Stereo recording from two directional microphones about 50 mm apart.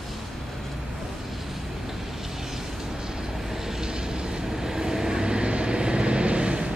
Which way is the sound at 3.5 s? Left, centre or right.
Centre.